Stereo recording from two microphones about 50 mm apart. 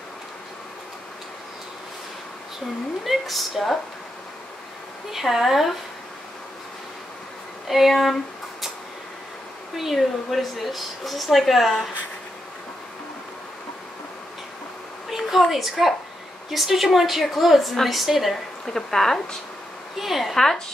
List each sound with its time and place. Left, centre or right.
3.0 s speech: centre
5.1 s speech: centre
7.6 s a sound: centre
9.8 s speech: centre
15.0 s a woman's voice: centre
18.7 s speech: centre
20.0 s speech: centre
20.3 s speech: centre